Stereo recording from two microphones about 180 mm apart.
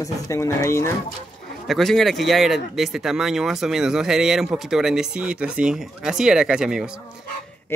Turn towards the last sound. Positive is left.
turn(degrees=-5)  # may be behind; listen again after turning